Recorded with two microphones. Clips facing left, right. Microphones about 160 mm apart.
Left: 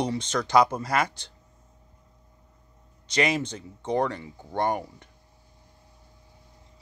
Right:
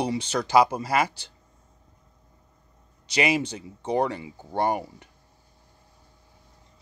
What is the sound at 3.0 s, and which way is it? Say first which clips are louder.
Speech: right 1 dB; 10° right (ahead or behind).